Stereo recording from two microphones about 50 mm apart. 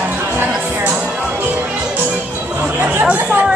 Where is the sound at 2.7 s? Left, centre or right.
Right.